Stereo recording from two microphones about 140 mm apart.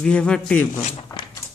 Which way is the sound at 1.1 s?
25° left (ahead or behind).